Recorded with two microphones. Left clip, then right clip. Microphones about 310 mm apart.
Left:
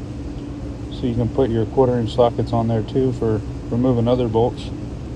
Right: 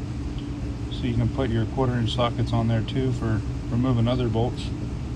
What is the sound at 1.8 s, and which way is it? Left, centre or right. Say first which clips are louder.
Speech: left 10 dB; right.